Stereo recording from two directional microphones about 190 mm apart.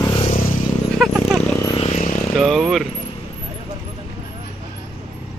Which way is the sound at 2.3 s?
Centre (ahead or behind).